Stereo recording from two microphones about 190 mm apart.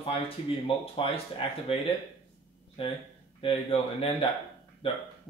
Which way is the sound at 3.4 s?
30° left (ahead or behind).